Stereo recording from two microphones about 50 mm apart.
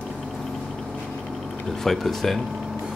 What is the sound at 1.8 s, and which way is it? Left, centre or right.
Speech, centre.